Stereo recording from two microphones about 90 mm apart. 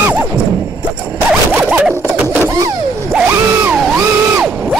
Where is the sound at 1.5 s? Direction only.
10° right (ahead or behind).